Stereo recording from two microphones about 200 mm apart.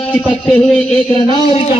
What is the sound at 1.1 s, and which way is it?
Speech, 25° left (ahead or behind).